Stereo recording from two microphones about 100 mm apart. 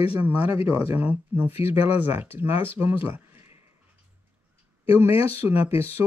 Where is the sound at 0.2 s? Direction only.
20° right (ahead or behind).